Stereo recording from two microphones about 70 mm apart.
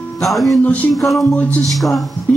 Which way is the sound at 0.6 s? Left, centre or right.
Left.